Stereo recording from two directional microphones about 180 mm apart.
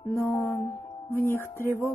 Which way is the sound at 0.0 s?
15° left (ahead or behind).